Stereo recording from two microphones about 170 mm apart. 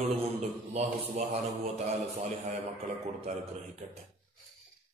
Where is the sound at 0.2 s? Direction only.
40° right (ahead or behind).